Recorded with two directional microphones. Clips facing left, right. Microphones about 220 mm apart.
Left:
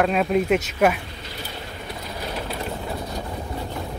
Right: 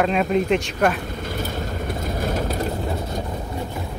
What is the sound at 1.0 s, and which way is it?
Vehicle, 50° right (ahead or behind).